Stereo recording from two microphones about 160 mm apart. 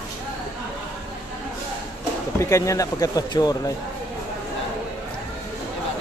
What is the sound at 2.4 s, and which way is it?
Speech, 20° left (ahead or behind).